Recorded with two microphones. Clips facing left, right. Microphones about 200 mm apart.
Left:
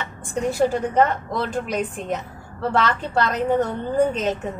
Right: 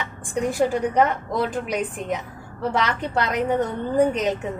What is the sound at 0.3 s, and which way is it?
A woman's voice, 15° right (ahead or behind).